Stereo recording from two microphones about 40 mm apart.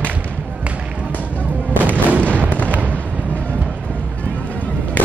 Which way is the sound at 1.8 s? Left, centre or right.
Right.